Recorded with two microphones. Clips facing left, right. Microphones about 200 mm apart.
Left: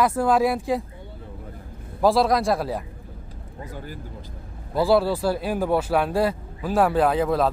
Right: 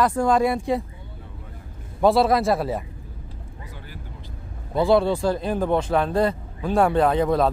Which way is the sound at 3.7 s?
45° left (ahead or behind).